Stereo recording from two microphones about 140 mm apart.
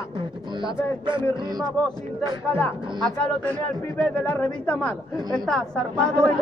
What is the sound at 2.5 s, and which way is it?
Speech, 10° left (ahead or behind).